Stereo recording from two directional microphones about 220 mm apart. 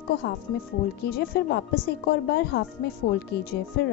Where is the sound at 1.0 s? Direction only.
45° left (ahead or behind).